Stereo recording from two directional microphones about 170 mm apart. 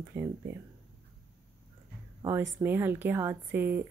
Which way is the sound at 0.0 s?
15° right (ahead or behind).